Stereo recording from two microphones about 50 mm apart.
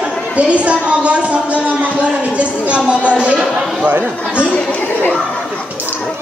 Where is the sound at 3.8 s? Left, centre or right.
Right.